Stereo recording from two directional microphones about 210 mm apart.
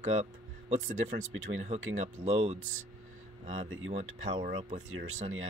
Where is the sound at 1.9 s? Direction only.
30° right (ahead or behind).